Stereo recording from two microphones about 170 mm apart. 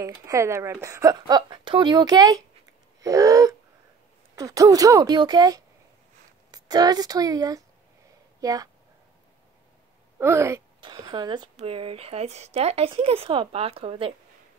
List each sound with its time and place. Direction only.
0.0 s speech: 20° right (ahead or behind)
3.0 s a sound: 20° right (ahead or behind)
4.4 s speech: 20° right (ahead or behind)
10.1 s speech: 15° right (ahead or behind)
10.8 s speech: 25° right (ahead or behind)